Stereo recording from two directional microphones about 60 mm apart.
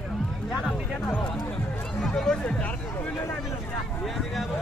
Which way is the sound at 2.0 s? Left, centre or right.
Centre.